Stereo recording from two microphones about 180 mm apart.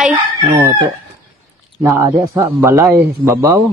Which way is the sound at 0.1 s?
15° right (ahead or behind).